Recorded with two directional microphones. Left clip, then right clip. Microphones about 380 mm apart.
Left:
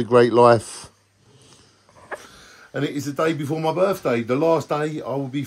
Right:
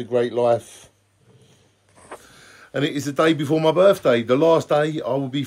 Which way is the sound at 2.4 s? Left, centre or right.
Centre.